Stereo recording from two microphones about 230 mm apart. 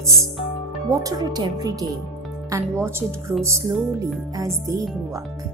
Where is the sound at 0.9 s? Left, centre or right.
Centre.